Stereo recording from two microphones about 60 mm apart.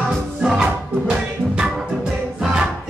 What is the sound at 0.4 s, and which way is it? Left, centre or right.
Music, centre.